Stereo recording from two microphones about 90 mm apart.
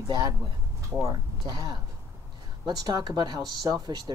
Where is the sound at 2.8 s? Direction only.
45° right (ahead or behind).